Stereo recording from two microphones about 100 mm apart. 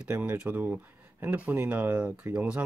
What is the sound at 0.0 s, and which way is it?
Speech, 15° right (ahead or behind).